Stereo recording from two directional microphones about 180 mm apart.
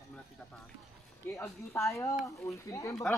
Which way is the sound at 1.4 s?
15° left (ahead or behind).